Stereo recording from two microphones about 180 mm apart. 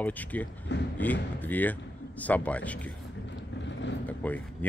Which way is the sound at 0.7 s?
80° left.